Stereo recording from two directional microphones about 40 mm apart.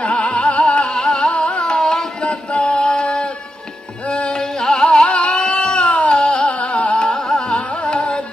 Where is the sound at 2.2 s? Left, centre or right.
Left.